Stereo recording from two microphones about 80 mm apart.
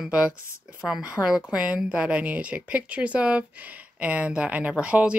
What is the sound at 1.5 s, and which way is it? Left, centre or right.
Speech, centre.